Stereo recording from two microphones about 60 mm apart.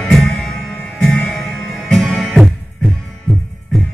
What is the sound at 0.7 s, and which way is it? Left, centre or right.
Music, left.